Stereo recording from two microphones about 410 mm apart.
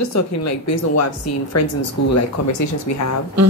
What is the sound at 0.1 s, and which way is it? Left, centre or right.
A woman's voice, left.